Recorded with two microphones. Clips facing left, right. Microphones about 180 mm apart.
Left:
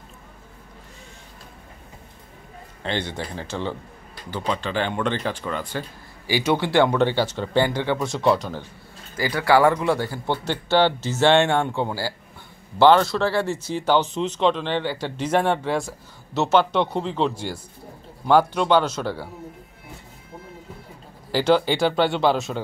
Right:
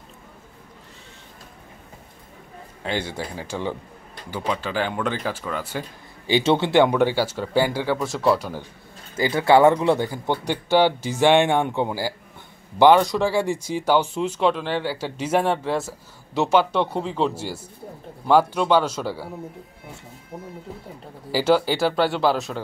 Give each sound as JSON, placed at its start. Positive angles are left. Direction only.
{"t": 2.8, "sound": "speech", "side_deg": -10}
{"t": 6.2, "sound": "speech", "side_deg": -25}
{"t": 9.1, "sound": "speech", "side_deg": -25}
{"t": 21.3, "sound": "speech", "side_deg": -5}